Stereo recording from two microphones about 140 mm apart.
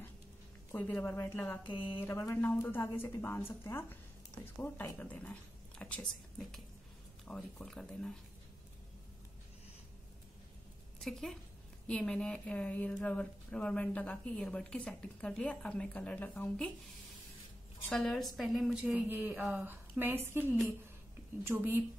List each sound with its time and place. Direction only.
0.7 s a woman's voice: 15° left (ahead or behind)
11.0 s a woman's voice: centre (ahead or behind)
17.8 s a woman's voice: centre (ahead or behind)
18.9 s a woman's voice: 15° right (ahead or behind)
19.3 s a woman's voice: 5° right (ahead or behind)
19.6 s a woman's voice: 15° right (ahead or behind)